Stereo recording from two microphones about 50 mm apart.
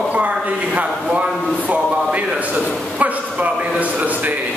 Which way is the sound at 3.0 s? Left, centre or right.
Right.